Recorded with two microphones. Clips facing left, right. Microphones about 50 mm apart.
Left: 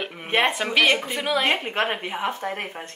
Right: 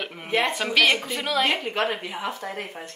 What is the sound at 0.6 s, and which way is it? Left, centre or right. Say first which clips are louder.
Speech: left 1 dB; left.